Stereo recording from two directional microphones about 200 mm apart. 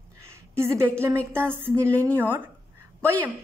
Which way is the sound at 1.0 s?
10° right (ahead or behind).